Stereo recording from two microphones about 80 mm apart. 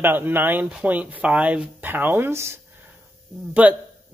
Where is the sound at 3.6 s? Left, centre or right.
Centre.